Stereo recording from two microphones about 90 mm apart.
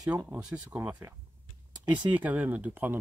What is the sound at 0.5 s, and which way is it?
Speech, 15° right (ahead or behind).